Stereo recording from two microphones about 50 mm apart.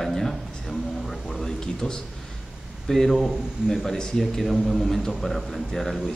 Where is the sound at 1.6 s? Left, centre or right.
Centre.